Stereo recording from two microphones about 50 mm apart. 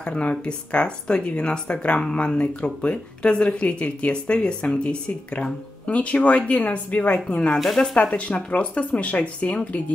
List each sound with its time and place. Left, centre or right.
0.0 s speech: left
7.5 s speech: centre
8.1 s speech: left